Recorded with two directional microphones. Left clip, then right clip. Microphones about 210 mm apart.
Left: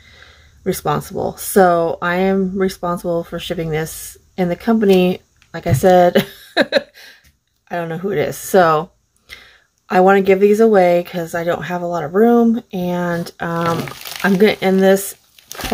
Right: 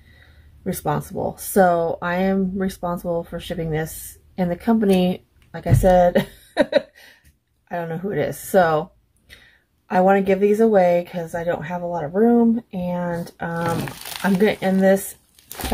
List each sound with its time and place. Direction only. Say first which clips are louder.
0.2 s speech: left 6 dB; 15° left (ahead or behind)